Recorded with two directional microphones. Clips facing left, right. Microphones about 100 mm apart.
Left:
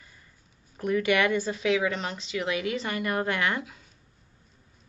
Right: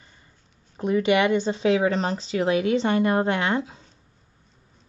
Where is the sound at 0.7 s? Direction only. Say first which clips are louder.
Right 4 dB; 25° right (ahead or behind).